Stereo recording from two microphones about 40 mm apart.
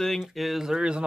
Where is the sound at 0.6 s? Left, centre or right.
Centre.